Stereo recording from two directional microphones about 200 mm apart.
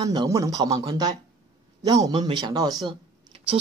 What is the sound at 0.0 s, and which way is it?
Speech, 20° right (ahead or behind).